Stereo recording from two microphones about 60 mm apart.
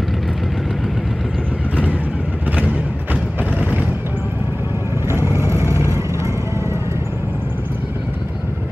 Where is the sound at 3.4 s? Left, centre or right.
Left.